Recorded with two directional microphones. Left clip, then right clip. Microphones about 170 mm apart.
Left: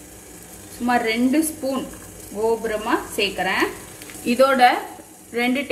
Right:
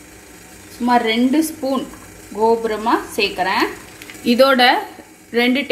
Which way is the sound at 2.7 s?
40° right (ahead or behind).